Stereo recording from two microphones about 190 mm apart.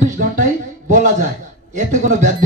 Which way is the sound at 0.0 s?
40° right (ahead or behind).